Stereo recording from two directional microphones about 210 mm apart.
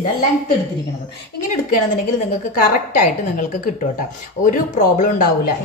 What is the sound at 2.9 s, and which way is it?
A woman's voice, 35° left (ahead or behind).